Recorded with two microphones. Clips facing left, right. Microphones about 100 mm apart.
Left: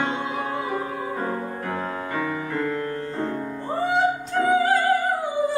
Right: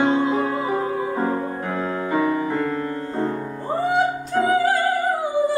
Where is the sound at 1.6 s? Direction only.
15° right (ahead or behind).